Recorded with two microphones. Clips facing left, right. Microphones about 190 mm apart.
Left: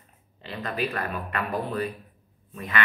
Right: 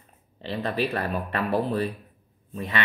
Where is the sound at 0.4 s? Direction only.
30° right (ahead or behind).